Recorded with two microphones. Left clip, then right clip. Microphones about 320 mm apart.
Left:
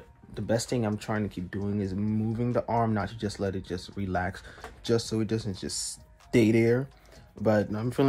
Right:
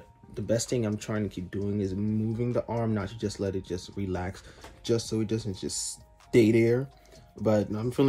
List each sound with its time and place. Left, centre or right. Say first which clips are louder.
0.3 s speech: even; centre